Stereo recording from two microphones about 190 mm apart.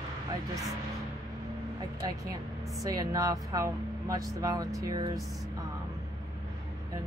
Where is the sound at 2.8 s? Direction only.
20° right (ahead or behind).